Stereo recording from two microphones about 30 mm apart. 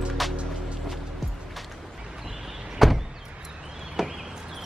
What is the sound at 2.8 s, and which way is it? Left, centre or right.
Door, centre.